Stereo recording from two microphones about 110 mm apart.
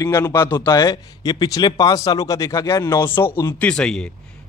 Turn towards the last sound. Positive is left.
turn(degrees=10)  # may be behind; listen again after turning